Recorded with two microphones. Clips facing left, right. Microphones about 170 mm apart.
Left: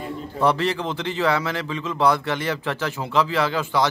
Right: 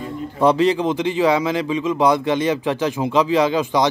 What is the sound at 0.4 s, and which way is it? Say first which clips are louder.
A man's voice: right 6 dB; 15° right (ahead or behind).